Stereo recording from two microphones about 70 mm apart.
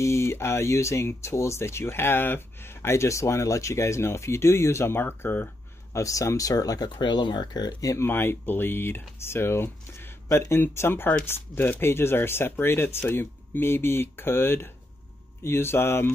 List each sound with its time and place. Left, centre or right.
0.0 s speech: left
5.9 s speech: left
8.1 s speech: left